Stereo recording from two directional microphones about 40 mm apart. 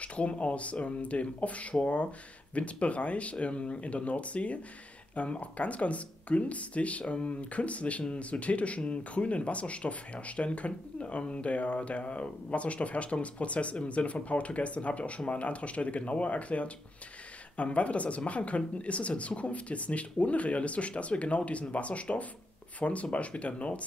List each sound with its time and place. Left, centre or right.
0.0 s speech: left